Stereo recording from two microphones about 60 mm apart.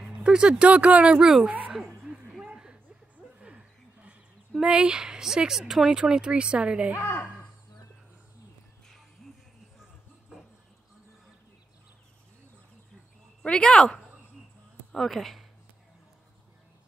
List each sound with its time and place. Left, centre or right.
0.2 s speech: centre
1.2 s a woman's voice: centre
2.4 s a sound: centre
3.3 s speech: right
13.4 s a woman's voice: centre